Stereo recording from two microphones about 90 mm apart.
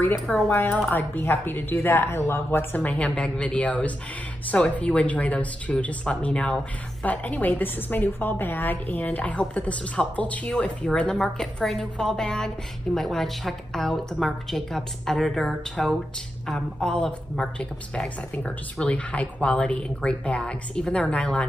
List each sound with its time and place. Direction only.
0.3 s speech: 10° left (ahead or behind)
0.8 s a woman's voice: 20° left (ahead or behind)
2.8 s a woman's voice: 15° left (ahead or behind)